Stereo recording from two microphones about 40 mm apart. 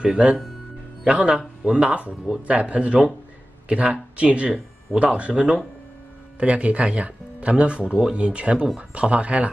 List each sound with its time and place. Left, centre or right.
0.0 s speech: right